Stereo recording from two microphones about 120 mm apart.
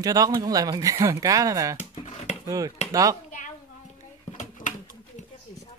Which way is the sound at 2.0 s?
75° left (ahead or behind).